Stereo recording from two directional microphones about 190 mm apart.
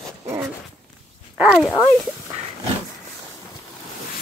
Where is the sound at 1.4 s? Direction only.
5° right (ahead or behind).